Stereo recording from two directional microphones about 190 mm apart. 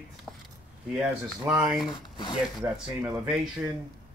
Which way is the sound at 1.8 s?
25° left (ahead or behind).